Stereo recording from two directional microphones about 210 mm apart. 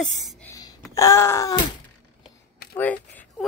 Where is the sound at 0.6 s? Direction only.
15° left (ahead or behind).